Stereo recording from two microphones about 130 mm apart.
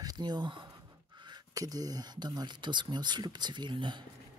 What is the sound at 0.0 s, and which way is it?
Speech, 30° right (ahead or behind).